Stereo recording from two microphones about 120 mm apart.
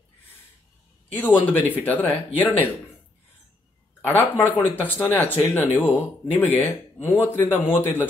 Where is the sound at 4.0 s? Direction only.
20° left (ahead or behind).